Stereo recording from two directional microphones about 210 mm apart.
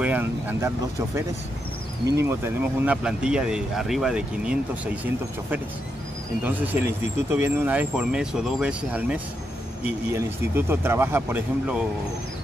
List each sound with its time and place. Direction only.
0.0 s speech: 10° right (ahead or behind)
2.2 s speech: 10° right (ahead or behind)
6.4 s speech: 10° right (ahead or behind)